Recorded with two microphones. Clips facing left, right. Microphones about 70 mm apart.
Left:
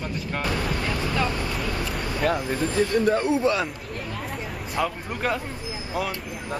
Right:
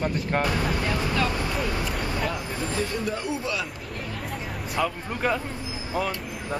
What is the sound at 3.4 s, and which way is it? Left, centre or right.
Speech, left.